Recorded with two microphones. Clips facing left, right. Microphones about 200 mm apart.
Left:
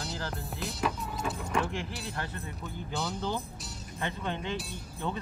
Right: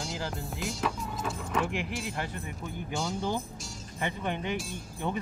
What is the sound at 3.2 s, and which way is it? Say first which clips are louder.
Speech: right 2 dB; 15° right (ahead or behind).